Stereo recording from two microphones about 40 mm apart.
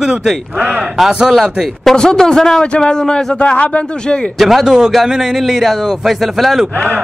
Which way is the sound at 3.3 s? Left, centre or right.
Left.